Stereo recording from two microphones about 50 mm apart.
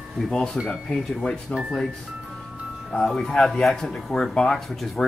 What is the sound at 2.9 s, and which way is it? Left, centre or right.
Speech, centre.